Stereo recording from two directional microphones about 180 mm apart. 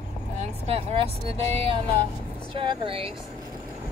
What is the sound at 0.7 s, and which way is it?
Music, 35° right (ahead or behind).